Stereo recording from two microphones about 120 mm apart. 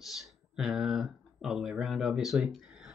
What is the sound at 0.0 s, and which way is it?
Speech, centre (ahead or behind).